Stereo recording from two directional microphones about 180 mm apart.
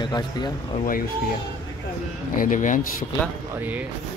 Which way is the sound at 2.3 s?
45° left (ahead or behind).